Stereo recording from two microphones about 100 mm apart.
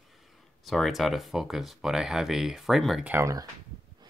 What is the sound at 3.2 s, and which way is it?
Speech, 35° right (ahead or behind).